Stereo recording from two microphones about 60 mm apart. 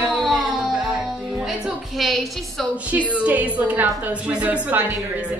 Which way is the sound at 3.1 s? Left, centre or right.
Right.